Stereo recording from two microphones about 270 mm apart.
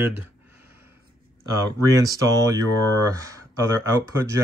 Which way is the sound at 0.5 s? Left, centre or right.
Centre.